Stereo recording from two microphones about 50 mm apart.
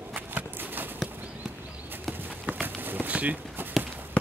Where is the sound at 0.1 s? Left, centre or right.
Right.